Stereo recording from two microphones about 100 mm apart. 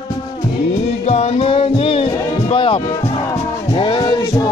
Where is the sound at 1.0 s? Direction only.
90° left; by 4.0 s 70° left (ahead or behind).